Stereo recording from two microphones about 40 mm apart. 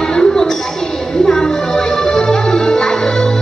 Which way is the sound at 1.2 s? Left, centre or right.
Centre.